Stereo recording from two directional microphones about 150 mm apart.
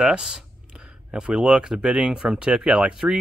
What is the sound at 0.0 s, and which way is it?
Speech, 5° right (ahead or behind).